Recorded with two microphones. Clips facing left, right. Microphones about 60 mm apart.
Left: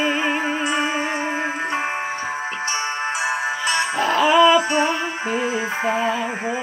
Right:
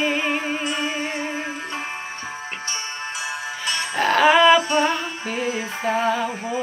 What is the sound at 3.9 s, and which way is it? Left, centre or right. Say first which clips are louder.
Music: right 1 dB; right.